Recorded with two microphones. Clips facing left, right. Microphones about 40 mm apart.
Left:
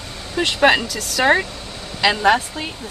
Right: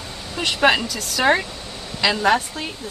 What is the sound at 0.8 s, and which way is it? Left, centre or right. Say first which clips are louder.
Speech: left 2 dB; centre.